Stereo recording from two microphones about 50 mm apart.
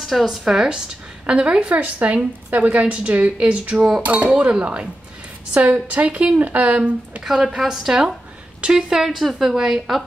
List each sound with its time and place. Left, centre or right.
0.0 s a woman's voice: centre
1.2 s a woman's voice: right
7.2 s a woman's voice: centre